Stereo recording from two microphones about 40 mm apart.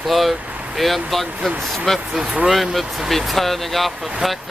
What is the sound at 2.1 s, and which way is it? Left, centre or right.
Speech, centre.